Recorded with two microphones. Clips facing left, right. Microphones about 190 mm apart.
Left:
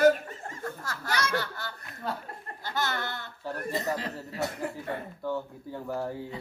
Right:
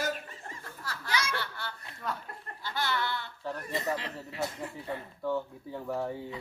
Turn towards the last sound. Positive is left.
turn(degrees=0)  # may be behind; listen again after turning